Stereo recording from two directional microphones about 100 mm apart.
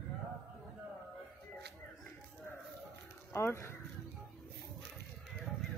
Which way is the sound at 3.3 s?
25° left (ahead or behind).